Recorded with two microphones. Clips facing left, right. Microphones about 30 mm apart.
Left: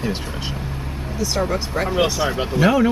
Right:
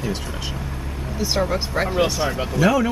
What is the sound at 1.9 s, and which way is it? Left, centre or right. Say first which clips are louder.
Speech: left 3 dB; centre.